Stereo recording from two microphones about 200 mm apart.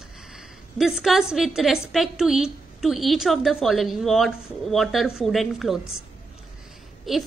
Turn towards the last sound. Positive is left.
turn(degrees=0)  # may be behind; listen again after turning